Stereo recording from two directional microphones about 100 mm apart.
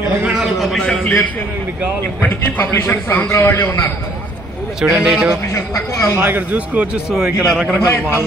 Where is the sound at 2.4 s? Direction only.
25° left (ahead or behind).